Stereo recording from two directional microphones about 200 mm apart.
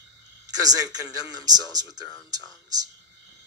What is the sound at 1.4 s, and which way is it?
Speech, 20° right (ahead or behind).